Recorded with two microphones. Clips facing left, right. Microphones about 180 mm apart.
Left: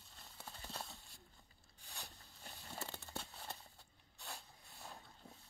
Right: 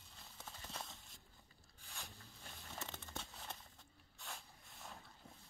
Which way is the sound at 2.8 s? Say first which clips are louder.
Left 1 dB; 5° left (ahead or behind).